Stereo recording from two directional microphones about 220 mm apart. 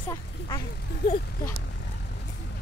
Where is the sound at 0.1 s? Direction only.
15° left (ahead or behind).